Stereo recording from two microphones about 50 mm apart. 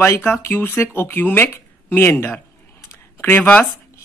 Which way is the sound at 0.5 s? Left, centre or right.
Left.